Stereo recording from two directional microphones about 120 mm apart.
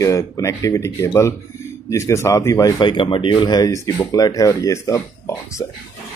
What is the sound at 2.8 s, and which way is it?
Speech, 45° left (ahead or behind).